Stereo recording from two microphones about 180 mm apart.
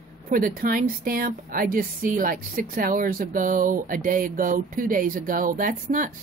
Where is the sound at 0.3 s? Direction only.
50° right (ahead or behind).